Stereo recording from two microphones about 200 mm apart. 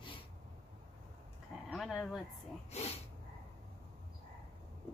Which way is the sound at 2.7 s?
30° left (ahead or behind).